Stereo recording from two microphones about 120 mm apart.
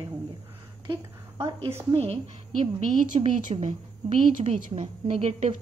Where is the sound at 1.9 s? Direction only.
55° right (ahead or behind).